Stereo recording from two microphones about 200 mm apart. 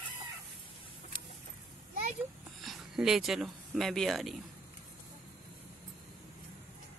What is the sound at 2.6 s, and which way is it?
Speech, centre (ahead or behind).